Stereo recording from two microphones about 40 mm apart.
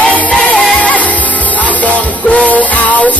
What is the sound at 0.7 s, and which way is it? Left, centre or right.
Music, left.